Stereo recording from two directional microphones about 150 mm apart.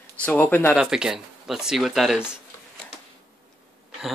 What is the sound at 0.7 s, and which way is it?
Speech, 5° right (ahead or behind).